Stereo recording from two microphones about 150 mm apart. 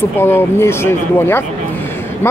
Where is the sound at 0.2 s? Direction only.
15° left (ahead or behind).